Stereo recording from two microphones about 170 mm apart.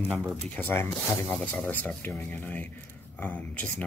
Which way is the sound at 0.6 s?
10° left (ahead or behind).